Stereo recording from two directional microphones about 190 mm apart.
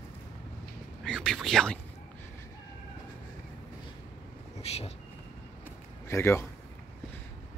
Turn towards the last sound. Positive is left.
turn(degrees=10)  # may be behind; listen again after turning